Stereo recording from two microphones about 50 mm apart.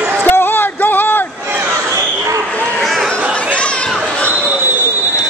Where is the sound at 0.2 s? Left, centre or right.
Left.